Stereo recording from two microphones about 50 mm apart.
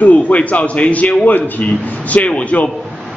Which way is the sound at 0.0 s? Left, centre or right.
Left.